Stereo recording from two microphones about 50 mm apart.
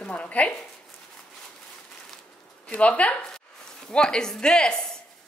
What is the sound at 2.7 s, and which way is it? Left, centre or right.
Speech, left.